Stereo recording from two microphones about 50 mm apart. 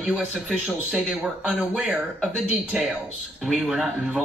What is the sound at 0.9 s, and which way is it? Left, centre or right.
Speech, centre.